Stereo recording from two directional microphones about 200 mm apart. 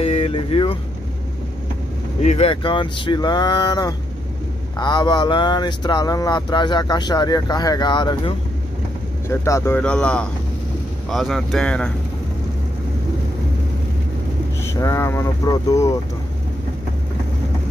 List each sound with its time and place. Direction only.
0.0 s vehicle: 30° left (ahead or behind)
2.2 s speech: 30° left (ahead or behind)
9.3 s speech: 15° left (ahead or behind)
14.6 s speech: 15° left (ahead or behind)